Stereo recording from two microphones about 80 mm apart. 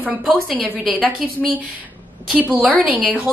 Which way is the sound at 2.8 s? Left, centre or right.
Centre.